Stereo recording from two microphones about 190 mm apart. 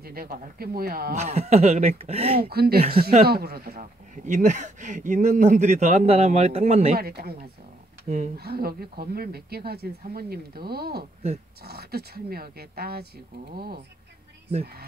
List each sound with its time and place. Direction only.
0.0 s speech: 50° right (ahead or behind)
1.1 s speech: 35° right (ahead or behind)
2.5 s speech: 55° right (ahead or behind)
4.3 s speech: 40° right (ahead or behind)
7.0 s speech: 55° right (ahead or behind)
8.4 s speech: 55° right (ahead or behind)